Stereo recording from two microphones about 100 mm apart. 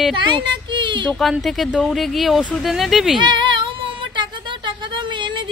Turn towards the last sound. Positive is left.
turn(degrees=-50)  # may be behind; listen again after turning